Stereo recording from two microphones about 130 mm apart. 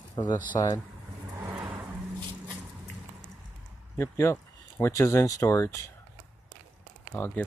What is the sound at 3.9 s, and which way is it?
Speech, 20° left (ahead or behind).